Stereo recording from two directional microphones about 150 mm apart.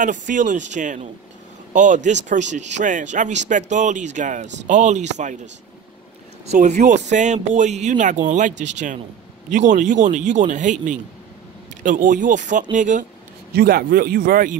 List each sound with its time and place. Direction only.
0.0 s speech: 60° right (ahead or behind)
6.5 s speech: 50° right (ahead or behind)
13.5 s a man's voice: 90° right; by 14.6 s 65° right (ahead or behind)